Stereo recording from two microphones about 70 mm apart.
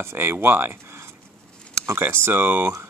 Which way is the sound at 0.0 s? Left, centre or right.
Right.